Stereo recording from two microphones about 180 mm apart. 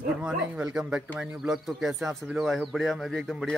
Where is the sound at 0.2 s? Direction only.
5° right (ahead or behind).